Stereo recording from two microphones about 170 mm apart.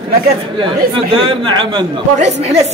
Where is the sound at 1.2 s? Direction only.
30° right (ahead or behind).